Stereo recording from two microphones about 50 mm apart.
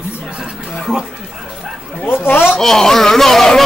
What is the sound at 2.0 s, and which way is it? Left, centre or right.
Speech, left.